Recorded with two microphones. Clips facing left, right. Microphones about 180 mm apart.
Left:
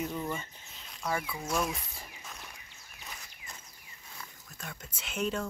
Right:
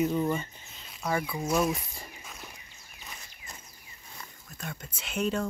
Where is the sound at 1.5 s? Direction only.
Centre (ahead or behind).